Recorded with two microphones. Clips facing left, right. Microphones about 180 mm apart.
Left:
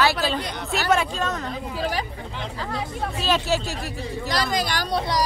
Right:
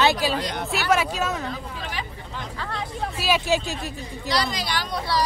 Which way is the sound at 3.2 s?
10° right (ahead or behind).